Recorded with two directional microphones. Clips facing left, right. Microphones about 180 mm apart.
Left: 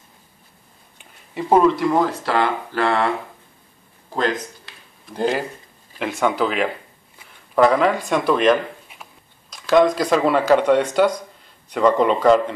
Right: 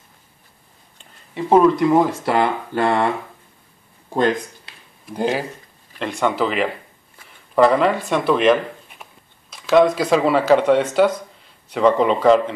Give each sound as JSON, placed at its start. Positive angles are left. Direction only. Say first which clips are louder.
{"t": 0.9, "sound": "a sound", "louder": "even", "side_deg": 5}
{"t": 1.6, "sound": "speech", "louder": "right 3 dB", "side_deg": -5}
{"t": 2.2, "sound": "speech", "louder": "right 2 dB", "side_deg": -20}
{"t": 5.0, "sound": "speech", "louder": "even", "side_deg": -5}